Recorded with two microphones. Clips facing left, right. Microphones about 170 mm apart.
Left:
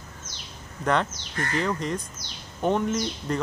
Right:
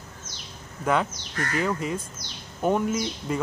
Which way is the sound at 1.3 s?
25° left (ahead or behind).